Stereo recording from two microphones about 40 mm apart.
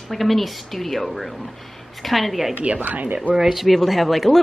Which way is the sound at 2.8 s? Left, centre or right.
Right.